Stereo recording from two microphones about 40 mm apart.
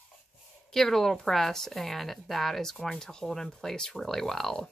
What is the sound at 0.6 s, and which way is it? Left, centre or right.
A woman's voice, centre.